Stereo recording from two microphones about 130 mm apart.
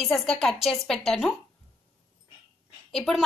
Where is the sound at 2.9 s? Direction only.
Centre (ahead or behind).